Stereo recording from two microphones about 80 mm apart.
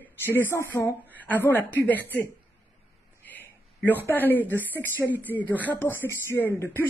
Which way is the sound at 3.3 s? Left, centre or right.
Left.